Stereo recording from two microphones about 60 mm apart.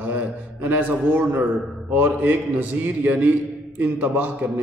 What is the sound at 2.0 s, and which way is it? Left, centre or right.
A man's voice, right.